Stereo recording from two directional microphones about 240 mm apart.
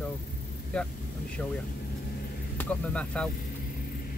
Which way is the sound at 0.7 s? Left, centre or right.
Centre.